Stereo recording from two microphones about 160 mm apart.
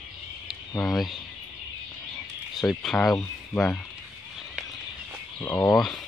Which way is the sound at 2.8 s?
5° left (ahead or behind).